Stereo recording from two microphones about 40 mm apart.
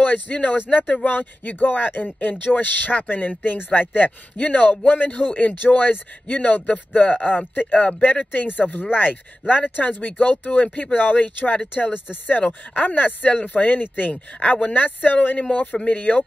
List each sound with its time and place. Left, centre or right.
0.0 s speech: left